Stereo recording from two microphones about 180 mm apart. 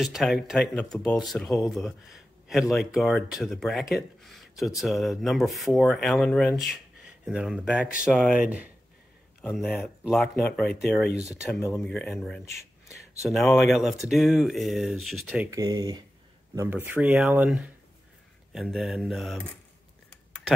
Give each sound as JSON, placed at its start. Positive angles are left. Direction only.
{"t": 0.0, "sound": "speech", "side_deg": 0}
{"t": 12.8, "sound": "a sound", "side_deg": 15}
{"t": 13.3, "sound": "speech", "side_deg": 0}
{"t": 15.5, "sound": "speech", "side_deg": -20}
{"t": 16.5, "sound": "speech", "side_deg": -10}